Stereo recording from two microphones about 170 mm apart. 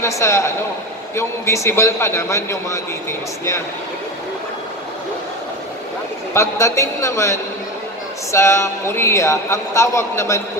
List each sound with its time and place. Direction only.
0.0 s a man's voice: 15° left (ahead or behind)
6.3 s a man's voice: 15° left (ahead or behind)